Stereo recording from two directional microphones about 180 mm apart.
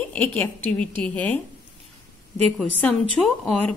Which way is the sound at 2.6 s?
5° left (ahead or behind).